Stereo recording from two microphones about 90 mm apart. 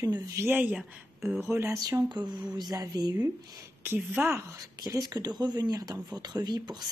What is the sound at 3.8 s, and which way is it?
Speech, 25° right (ahead or behind).